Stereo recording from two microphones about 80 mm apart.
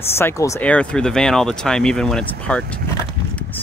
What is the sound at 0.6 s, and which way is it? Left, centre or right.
Speech, centre.